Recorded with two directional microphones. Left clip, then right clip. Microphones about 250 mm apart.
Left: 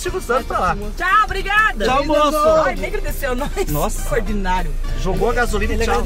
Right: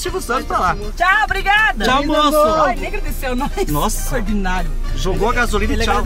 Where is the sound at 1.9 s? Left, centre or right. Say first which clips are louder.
Right 1 dB; right.